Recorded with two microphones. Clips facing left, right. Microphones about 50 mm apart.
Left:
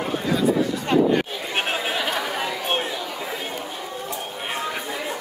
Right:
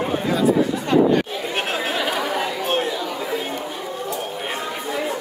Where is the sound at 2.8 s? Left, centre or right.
Centre.